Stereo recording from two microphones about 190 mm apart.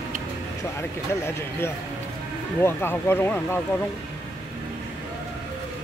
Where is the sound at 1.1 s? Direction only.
15° left (ahead or behind).